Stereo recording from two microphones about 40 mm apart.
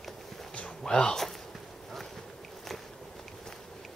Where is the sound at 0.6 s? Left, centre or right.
Left.